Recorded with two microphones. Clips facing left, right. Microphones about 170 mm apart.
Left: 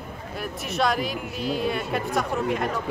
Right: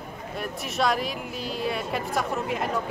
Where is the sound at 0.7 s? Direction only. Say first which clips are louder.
Left 1 dB; centre (ahead or behind).